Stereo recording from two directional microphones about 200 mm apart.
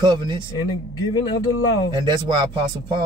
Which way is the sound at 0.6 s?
20° left (ahead or behind).